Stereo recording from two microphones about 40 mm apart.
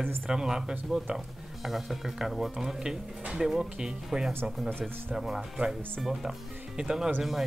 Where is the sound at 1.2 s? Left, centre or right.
Centre.